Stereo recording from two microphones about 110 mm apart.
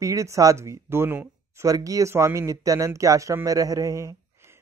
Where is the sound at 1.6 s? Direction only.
30° right (ahead or behind).